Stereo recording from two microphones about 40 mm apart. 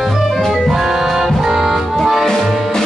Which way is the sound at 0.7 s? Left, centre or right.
Centre.